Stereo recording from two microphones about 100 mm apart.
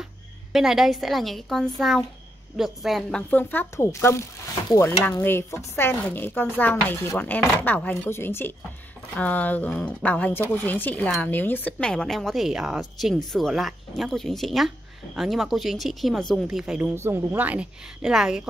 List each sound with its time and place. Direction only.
0.5 s speech: 5° right (ahead or behind); by 11.7 s 20° left (ahead or behind)
11.8 s a woman's voice: 5° left (ahead or behind)
16.9 s a woman's voice: 25° right (ahead or behind); by 18.5 s 5° right (ahead or behind)